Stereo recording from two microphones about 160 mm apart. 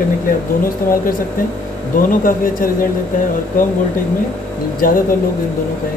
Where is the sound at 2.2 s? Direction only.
60° left (ahead or behind).